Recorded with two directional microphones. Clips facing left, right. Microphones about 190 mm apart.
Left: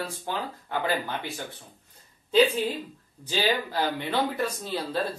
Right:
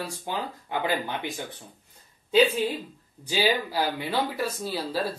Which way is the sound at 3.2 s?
10° right (ahead or behind).